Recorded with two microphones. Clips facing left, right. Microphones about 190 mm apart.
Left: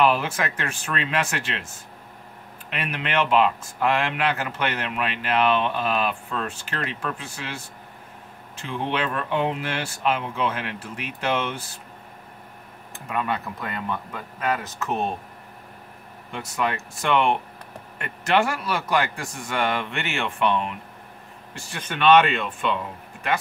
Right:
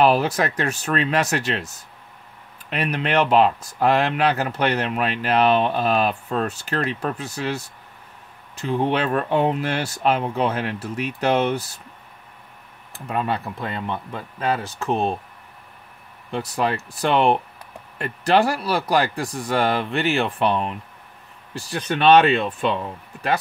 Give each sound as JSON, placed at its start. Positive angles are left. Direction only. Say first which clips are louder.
{"t": 0.0, "sound": "speech", "louder": "right 4 dB", "side_deg": -40}
{"t": 2.7, "sound": "speech", "louder": "right 5 dB", "side_deg": -40}
{"t": 12.9, "sound": "speech", "louder": "right 3 dB", "side_deg": -30}
{"t": 16.3, "sound": "speech", "louder": "right 4 dB", "side_deg": -35}